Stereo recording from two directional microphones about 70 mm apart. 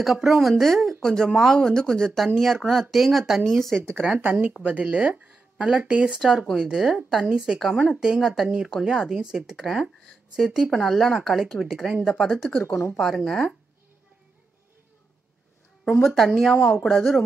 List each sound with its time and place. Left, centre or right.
0.0 s speech: centre
3.9 s speech: centre
6.6 s speech: centre
12.6 s speech: left
12.9 s speech: centre
16.2 s speech: centre